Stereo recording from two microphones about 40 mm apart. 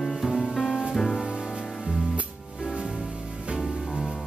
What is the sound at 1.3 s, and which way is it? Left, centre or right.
Music, right.